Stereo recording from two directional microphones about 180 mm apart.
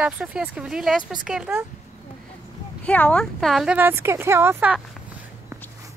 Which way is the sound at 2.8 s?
5° left (ahead or behind).